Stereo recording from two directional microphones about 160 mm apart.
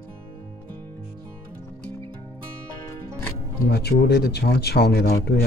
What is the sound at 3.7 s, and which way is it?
Speech, 75° left (ahead or behind).